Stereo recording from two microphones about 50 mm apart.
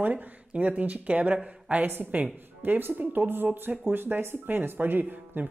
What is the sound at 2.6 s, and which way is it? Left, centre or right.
Speech, right.